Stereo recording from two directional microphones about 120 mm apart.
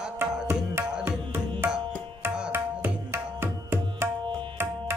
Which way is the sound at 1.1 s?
20° right (ahead or behind).